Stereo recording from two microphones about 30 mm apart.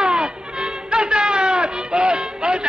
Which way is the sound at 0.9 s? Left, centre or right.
Right.